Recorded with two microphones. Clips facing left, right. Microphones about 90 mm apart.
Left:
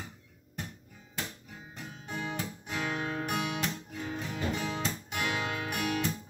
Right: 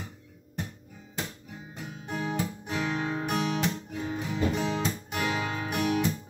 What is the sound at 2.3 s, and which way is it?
Guitar, 20° right (ahead or behind).